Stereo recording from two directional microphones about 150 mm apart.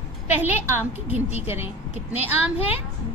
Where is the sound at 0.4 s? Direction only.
15° right (ahead or behind).